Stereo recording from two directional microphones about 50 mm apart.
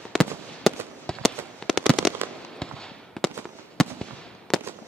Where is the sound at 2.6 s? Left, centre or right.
Centre.